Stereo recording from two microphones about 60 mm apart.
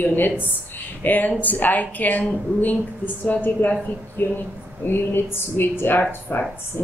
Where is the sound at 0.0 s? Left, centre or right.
Left.